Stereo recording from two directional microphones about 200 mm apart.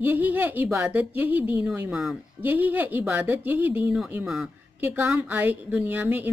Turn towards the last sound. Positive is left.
turn(degrees=-10)  # may be behind; listen again after turning